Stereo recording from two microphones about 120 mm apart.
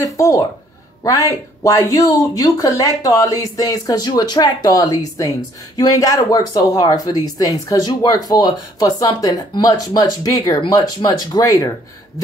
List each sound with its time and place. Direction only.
0.0 s speech: 25° left (ahead or behind)